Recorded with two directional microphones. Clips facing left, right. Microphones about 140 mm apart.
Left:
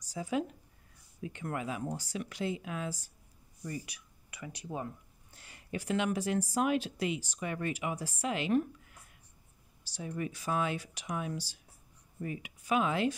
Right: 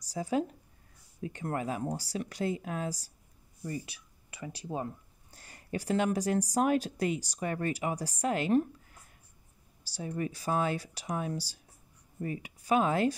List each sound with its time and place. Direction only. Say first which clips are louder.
0.1 s speech: right 3 dB; 35° right (ahead or behind)
9.9 s speech: right 3 dB; 35° right (ahead or behind)